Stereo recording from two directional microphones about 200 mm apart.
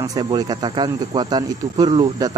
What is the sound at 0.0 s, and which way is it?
Speech, 20° right (ahead or behind).